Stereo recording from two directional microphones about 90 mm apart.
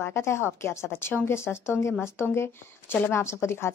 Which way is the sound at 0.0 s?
30° left (ahead or behind).